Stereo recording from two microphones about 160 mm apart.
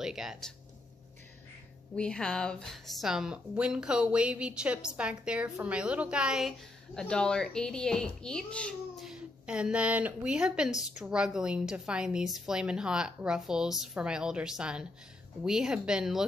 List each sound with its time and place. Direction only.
0.0 s speech: 5° right (ahead or behind)
2.0 s a woman's voice: 5° left (ahead or behind)
9.1 s a woman's voice: 5° right (ahead or behind)